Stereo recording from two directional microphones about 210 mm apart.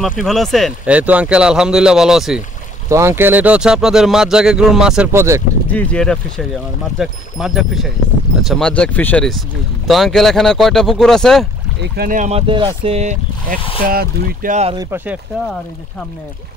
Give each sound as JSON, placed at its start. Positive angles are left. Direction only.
{"t": 0.2, "sound": "speech", "side_deg": 0}
{"t": 2.9, "sound": "speech", "side_deg": -10}
{"t": 5.7, "sound": "speech", "side_deg": 5}
{"t": 11.8, "sound": "speech", "side_deg": -50}
{"t": 14.8, "sound": "speech", "side_deg": -10}